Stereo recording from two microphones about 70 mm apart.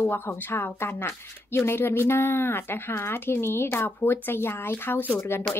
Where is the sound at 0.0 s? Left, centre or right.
Left.